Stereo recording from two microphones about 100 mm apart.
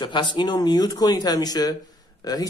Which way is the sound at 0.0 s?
50° left (ahead or behind).